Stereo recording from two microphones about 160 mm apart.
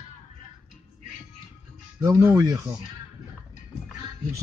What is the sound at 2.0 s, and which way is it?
Speech, 15° right (ahead or behind).